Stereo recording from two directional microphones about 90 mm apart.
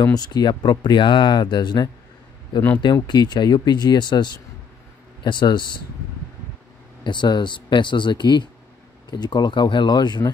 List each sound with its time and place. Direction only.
0.0 s speech: 45° left (ahead or behind)
7.0 s speech: 60° left (ahead or behind)